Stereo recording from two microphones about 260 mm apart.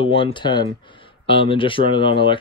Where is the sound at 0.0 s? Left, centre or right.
Centre.